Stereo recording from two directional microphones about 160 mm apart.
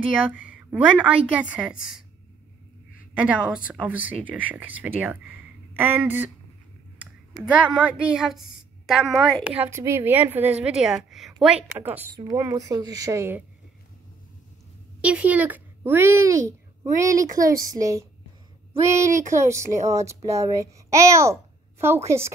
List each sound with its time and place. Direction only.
0.3 s a woman's voice: 10° right (ahead or behind)
3.2 s a woman's voice: 5° right (ahead or behind)
7.7 s a woman's voice: 5° right (ahead or behind)
15.0 s a woman's voice: 10° right (ahead or behind)